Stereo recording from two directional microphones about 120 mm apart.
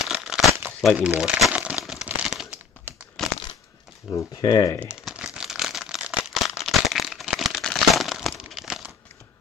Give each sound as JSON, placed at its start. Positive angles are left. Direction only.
{"t": 0.0, "sound": "crumpling", "side_deg": -5}
{"t": 3.2, "sound": "crumpling", "side_deg": 5}
{"t": 4.1, "sound": "speech", "side_deg": 30}
{"t": 4.8, "sound": "crumpling", "side_deg": -10}